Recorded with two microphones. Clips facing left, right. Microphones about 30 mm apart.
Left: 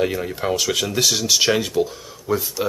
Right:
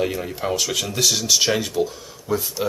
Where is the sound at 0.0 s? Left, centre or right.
Centre.